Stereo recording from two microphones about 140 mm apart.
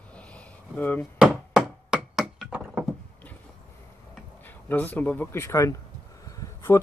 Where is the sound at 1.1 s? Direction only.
5° right (ahead or behind).